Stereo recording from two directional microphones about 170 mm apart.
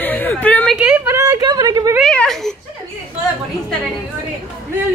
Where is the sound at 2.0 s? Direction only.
5° left (ahead or behind).